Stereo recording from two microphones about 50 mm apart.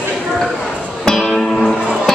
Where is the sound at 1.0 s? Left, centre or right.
Centre.